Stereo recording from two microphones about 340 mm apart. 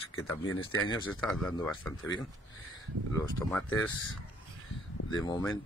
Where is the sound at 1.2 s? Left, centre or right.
Centre.